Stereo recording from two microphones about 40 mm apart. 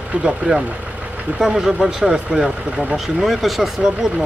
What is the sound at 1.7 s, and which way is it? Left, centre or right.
Speech, right.